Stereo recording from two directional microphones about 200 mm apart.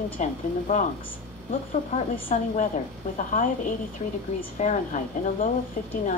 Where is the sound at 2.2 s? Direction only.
40° left (ahead or behind).